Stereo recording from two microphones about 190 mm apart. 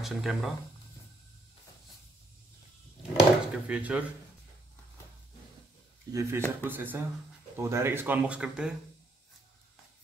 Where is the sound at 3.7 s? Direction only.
5° right (ahead or behind).